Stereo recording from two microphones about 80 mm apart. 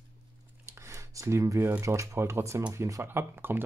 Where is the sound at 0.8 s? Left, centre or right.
Right.